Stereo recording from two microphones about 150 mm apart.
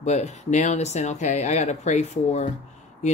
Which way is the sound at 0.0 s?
50° left (ahead or behind).